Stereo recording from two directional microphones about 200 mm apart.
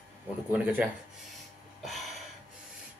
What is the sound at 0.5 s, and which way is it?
Speech, 5° right (ahead or behind).